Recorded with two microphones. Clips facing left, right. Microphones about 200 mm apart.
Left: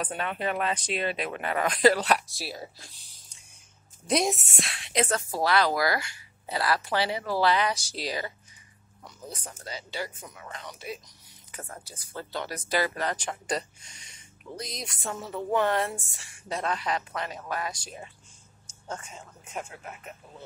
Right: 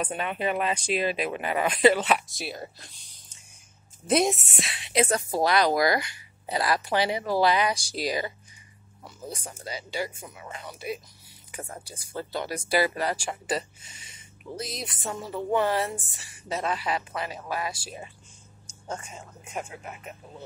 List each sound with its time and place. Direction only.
0.0 s speech: 10° right (ahead or behind)
4.1 s a woman's voice: centre (ahead or behind)
19.4 s speech: 10° right (ahead or behind)